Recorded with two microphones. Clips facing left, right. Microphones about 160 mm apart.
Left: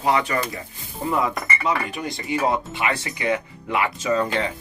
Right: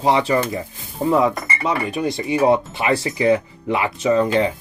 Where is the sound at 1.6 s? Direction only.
25° right (ahead or behind).